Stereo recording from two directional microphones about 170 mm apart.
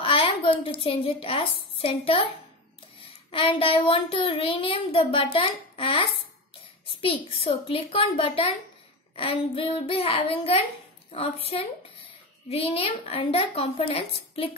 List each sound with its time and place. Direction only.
0.0 s speech: 30° left (ahead or behind)
3.3 s child singing: 30° left (ahead or behind)